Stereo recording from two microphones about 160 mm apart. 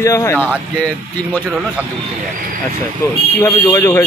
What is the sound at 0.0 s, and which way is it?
Speech, 20° left (ahead or behind).